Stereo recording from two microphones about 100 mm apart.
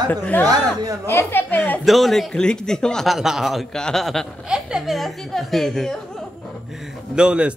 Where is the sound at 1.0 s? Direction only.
25° left (ahead or behind).